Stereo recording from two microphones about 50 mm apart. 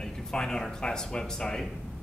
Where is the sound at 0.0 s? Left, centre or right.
Centre.